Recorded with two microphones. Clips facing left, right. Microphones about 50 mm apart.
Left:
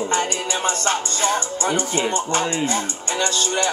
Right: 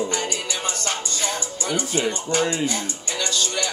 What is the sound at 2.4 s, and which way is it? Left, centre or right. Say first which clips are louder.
Music: even; centre.